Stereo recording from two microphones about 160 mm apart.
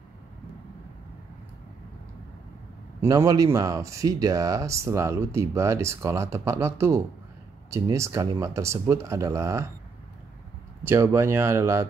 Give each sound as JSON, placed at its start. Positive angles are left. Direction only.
{"t": 3.0, "sound": "speech", "side_deg": -20}
{"t": 10.8, "sound": "speech", "side_deg": -15}